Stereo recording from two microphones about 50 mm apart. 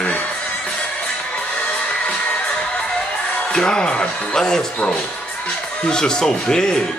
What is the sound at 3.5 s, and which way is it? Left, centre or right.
Speech, centre.